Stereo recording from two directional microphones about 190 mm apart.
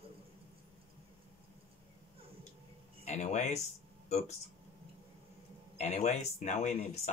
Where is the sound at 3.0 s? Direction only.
35° left (ahead or behind).